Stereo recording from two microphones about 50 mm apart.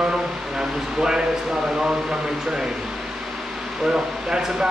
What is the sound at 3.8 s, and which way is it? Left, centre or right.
Speech, centre.